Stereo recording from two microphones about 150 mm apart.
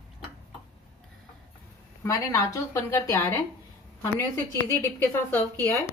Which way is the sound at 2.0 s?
20° left (ahead or behind).